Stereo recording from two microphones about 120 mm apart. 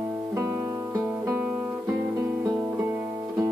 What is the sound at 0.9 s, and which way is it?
Music, 25° right (ahead or behind).